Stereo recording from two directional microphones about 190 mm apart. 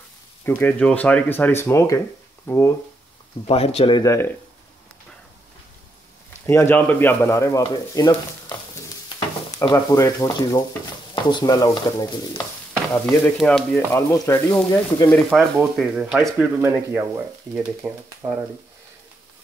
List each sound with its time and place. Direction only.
0.5 s speech: 10° left (ahead or behind)
3.4 s speech: 30° left (ahead or behind)
6.4 s speech: 15° left (ahead or behind)
13.2 s speech: 5° left (ahead or behind)
13.7 s speech: 15° left (ahead or behind)
15.1 s speech: centre (ahead or behind)
18.2 s speech: 20° right (ahead or behind)